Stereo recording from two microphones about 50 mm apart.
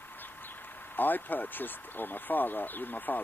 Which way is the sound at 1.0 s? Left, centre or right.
Left.